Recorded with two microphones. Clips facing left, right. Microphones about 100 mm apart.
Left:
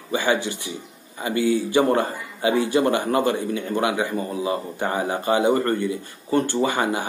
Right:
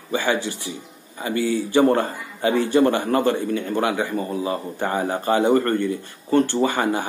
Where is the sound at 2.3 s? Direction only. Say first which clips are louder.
Right 1 dB; 45° right (ahead or behind).